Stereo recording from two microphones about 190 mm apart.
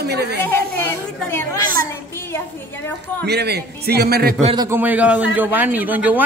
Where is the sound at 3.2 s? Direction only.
60° right (ahead or behind).